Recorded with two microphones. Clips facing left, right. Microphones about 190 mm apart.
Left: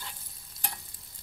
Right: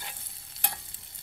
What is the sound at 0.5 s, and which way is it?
Stir, 25° right (ahead or behind).